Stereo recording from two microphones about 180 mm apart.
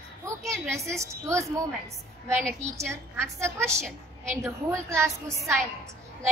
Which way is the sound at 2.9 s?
15° right (ahead or behind).